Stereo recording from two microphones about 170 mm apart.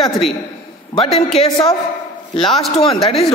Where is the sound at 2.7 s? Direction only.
35° left (ahead or behind).